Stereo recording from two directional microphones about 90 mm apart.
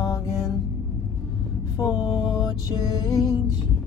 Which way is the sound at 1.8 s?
45° left (ahead or behind).